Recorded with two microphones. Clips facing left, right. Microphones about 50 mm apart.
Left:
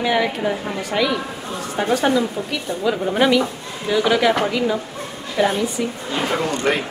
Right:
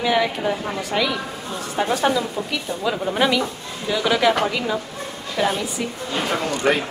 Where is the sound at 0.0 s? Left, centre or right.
Centre.